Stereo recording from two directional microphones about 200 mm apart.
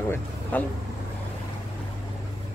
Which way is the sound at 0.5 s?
10° left (ahead or behind).